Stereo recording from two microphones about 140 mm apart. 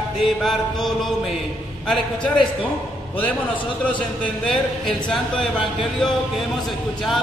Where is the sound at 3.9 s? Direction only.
5° left (ahead or behind).